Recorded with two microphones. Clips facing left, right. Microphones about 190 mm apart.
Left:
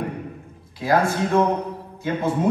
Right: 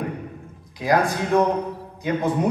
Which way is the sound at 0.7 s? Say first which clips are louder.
Left 1 dB; 15° right (ahead or behind).